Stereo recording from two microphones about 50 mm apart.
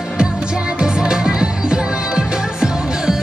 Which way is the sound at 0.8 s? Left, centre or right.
Centre.